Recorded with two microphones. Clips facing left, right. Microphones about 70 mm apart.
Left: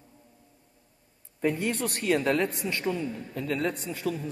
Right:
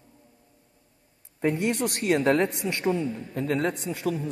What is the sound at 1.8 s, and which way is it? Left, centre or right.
A man's voice, right.